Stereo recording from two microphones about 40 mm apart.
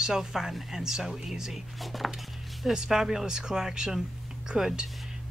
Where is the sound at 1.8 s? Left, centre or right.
Centre.